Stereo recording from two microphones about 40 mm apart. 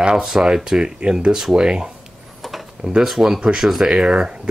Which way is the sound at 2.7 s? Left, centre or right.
Centre.